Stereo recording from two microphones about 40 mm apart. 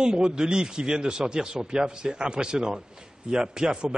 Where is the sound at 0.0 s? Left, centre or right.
Right.